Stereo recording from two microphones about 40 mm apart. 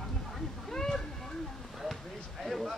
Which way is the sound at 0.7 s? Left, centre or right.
Centre.